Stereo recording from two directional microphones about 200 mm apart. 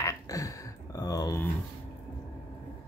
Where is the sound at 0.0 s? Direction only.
15° left (ahead or behind).